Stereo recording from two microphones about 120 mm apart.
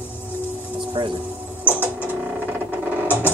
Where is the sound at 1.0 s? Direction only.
45° right (ahead or behind).